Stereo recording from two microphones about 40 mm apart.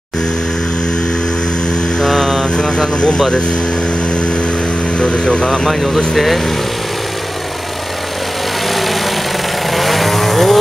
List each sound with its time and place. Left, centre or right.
1.7 s mantra: centre
2.5 s speech: left
5.0 s speech: left
5.5 s speech: centre
9.7 s vehicle: centre